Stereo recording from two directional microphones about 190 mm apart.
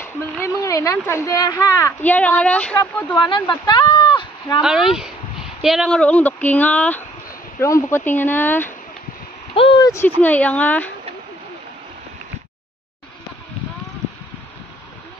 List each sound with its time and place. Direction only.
0.0 s speech: 15° left (ahead or behind)
3.2 s speech: 25° left (ahead or behind)
4.6 s speech: centre (ahead or behind)
9.6 s a sound: 25° left (ahead or behind)
10.2 s speech: 10° left (ahead or behind)